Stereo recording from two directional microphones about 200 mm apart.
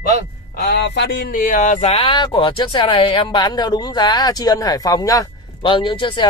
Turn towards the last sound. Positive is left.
turn(degrees=25)  # may be behind; listen again after turning